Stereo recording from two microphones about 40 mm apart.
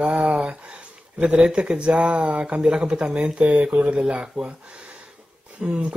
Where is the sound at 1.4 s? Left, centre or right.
Right.